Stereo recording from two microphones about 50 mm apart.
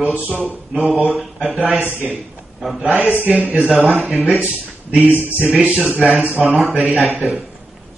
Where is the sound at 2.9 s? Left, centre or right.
Centre.